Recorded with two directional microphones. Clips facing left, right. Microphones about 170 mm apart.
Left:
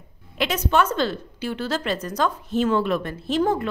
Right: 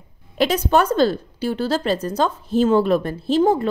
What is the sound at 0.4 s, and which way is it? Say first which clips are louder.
A woman's voice: right 4 dB; 35° right (ahead or behind).